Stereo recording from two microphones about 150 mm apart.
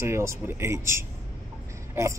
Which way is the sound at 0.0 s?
20° right (ahead or behind).